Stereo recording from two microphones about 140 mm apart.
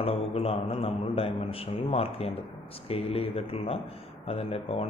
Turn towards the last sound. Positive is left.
turn(degrees=45)  # may be behind; listen again after turning